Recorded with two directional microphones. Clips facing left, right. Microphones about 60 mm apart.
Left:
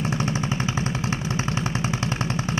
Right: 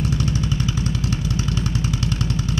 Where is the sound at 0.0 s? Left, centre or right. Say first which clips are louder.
Right 1 dB; left.